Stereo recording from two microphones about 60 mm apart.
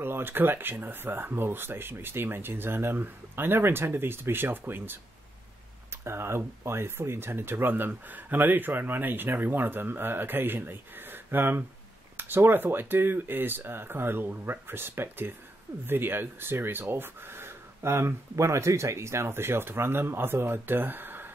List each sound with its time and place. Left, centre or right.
0.0 s speech: right
6.0 s speech: right